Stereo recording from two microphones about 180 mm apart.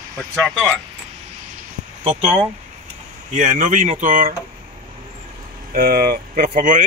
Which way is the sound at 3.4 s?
45° right (ahead or behind).